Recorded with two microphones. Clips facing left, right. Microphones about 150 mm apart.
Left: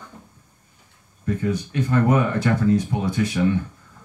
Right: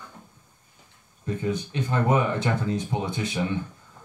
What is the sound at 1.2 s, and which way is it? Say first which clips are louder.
Speech: left 4 dB; 25° right (ahead or behind).